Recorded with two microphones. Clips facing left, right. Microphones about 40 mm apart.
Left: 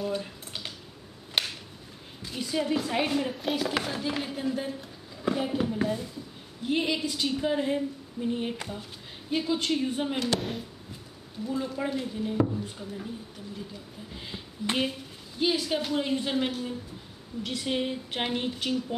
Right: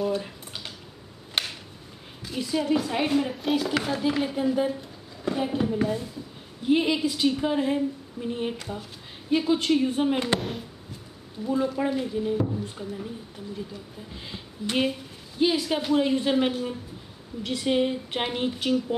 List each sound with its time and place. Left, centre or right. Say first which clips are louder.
0.0 s a sound: right 4 dB; centre
2.2 s a woman's voice: right 3 dB; centre
10.1 s speech: right 3 dB; right
11.4 s a woman's voice: right 5 dB; centre
14.1 s a woman's voice: even; centre